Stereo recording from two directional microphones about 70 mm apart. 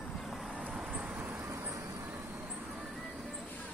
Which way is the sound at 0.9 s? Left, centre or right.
Centre.